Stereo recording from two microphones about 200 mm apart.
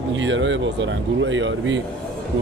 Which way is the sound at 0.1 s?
70° right (ahead or behind).